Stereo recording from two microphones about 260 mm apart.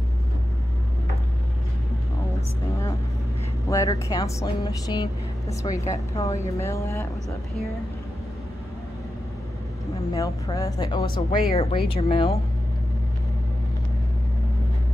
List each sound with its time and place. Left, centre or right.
3.7 s speech: centre
10.1 s speech: centre